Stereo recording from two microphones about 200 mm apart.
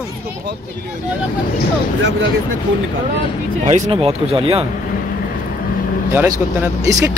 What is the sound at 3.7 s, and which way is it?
Speech, 30° right (ahead or behind).